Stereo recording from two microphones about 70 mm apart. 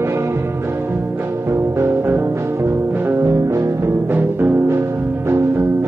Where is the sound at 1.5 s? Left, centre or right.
Right.